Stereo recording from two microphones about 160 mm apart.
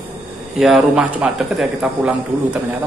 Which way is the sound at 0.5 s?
Centre (ahead or behind).